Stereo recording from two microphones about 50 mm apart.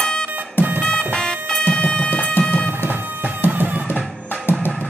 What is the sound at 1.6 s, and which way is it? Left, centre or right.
Music, left.